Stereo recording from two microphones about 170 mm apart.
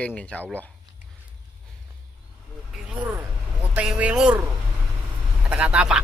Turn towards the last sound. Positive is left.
turn(degrees=-5)  # may be behind; listen again after turning